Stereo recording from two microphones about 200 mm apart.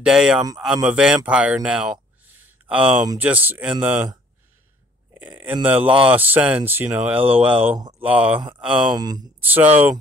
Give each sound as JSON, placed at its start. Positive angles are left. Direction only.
{"t": 0.0, "sound": "speech", "side_deg": -5}
{"t": 5.1, "sound": "speech", "side_deg": -10}
{"t": 8.6, "sound": "speech", "side_deg": -20}